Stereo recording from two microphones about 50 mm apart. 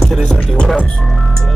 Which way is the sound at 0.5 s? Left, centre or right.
Centre.